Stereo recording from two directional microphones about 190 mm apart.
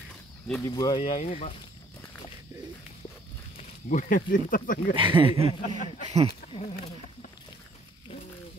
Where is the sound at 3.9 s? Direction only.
45° left (ahead or behind).